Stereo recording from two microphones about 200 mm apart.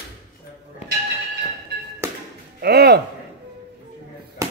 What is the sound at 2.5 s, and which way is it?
Speech, 55° right (ahead or behind).